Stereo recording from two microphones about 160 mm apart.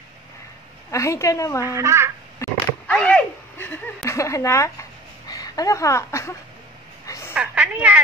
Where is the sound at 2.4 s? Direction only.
10° left (ahead or behind).